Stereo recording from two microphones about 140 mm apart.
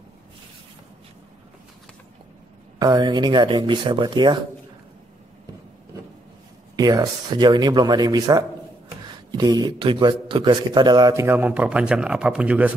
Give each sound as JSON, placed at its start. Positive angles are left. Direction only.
{"t": 2.8, "sound": "speech", "side_deg": -30}
{"t": 6.8, "sound": "a man's voice", "side_deg": -25}